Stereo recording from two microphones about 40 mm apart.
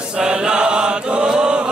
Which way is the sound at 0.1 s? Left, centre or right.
Right.